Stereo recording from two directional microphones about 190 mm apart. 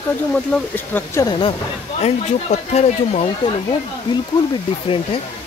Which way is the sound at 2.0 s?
35° left (ahead or behind).